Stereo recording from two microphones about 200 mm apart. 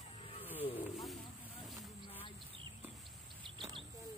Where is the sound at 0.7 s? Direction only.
Centre (ahead or behind).